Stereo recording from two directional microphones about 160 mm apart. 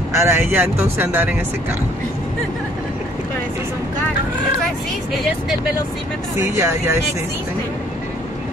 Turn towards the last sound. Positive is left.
turn(degrees=-15)  # may be behind; listen again after turning